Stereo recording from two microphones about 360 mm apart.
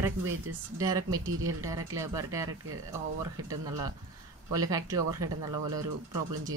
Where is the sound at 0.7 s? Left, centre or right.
Centre.